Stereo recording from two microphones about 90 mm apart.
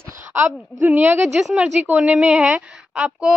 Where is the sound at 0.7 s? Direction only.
20° right (ahead or behind).